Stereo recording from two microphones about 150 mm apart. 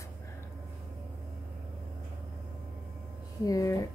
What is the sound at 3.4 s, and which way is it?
Speech, 20° left (ahead or behind).